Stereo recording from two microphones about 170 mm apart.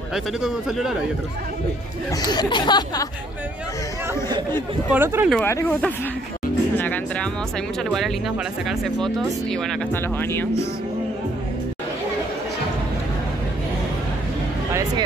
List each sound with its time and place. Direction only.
0.1 s speech: 5° right (ahead or behind)
2.2 s speech: 25° left (ahead or behind)
4.5 s speech: 15° left (ahead or behind)
4.9 s speech: 10° right (ahead or behind)
5.4 s speech: 15° left (ahead or behind)
8.6 s speech: centre (ahead or behind)
10.1 s speech: 10° left (ahead or behind)
14.7 s music: 20° right (ahead or behind)